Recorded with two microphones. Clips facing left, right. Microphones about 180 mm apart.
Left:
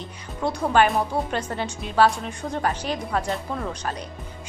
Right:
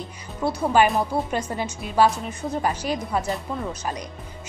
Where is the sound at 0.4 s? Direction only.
5° right (ahead or behind).